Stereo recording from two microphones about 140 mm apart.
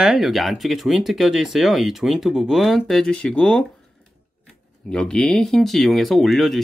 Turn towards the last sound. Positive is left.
turn(degrees=0)  # may be behind; listen again after turning